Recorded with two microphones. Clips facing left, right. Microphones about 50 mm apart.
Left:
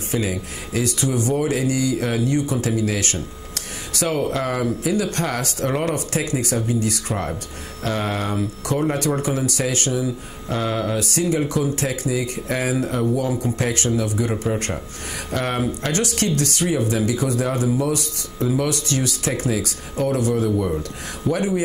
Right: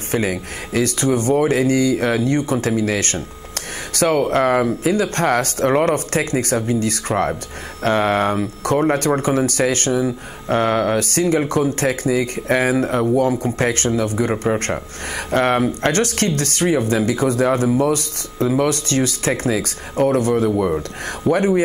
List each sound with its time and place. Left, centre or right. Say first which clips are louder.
0.1 s speech: right 4 dB; right